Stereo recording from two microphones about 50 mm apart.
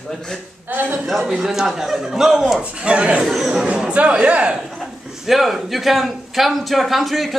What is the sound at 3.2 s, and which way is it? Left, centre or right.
Speech, centre.